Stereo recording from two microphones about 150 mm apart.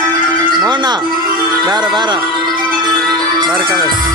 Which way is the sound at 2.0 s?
30° right (ahead or behind).